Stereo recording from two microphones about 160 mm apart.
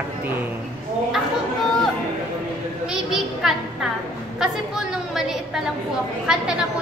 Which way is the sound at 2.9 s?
5° right (ahead or behind).